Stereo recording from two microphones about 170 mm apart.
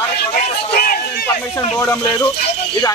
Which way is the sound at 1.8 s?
20° left (ahead or behind).